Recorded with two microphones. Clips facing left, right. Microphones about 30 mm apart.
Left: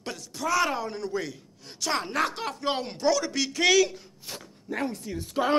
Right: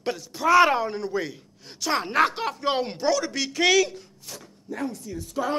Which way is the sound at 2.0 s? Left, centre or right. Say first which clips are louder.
Right 6 dB; centre.